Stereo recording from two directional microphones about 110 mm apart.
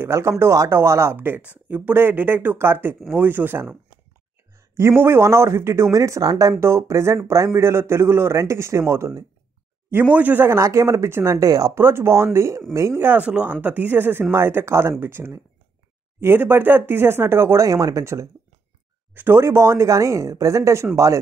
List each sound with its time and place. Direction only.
0.0 s speech: 25° right (ahead or behind)
11.8 s speech: 25° right (ahead or behind)